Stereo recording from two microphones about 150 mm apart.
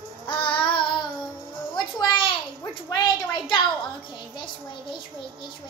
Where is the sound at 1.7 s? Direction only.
30° left (ahead or behind).